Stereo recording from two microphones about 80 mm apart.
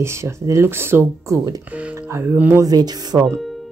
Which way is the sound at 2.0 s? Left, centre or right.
Right.